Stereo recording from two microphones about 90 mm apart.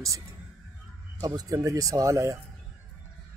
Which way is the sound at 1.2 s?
45° right (ahead or behind).